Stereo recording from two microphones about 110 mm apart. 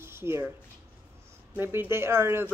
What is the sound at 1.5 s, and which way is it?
A woman's voice, 20° right (ahead or behind).